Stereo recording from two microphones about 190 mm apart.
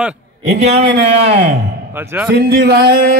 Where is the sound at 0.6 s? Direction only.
35° right (ahead or behind).